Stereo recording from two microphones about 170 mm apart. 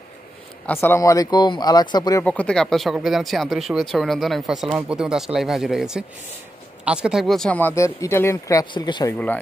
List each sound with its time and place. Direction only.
0.7 s speech: 15° left (ahead or behind)
2.2 s speech: 5° left (ahead or behind); by 9.1 s 25° left (ahead or behind)